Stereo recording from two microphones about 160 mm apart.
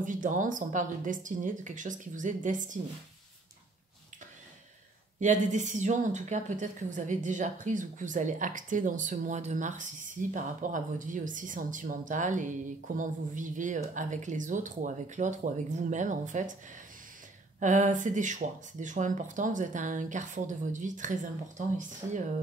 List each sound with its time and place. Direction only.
0.0 s a woman's voice: 55° right (ahead or behind)
5.2 s a woman's voice: 50° right (ahead or behind)
17.6 s a woman's voice: 50° right (ahead or behind)